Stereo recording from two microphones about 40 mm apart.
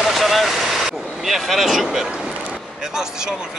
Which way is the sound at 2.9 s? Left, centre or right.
Centre.